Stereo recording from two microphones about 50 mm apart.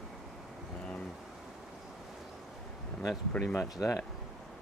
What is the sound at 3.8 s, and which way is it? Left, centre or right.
Speech, left.